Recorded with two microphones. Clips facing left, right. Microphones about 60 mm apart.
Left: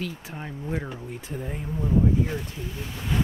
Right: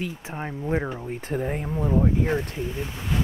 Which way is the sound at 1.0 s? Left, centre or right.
Right.